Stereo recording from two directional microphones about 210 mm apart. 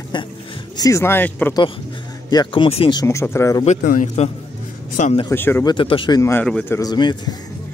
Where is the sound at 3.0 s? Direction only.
15° left (ahead or behind).